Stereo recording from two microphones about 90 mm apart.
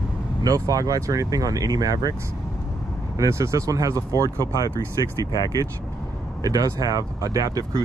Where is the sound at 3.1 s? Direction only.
35° right (ahead or behind).